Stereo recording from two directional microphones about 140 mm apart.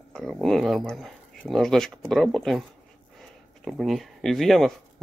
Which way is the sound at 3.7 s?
Centre (ahead or behind).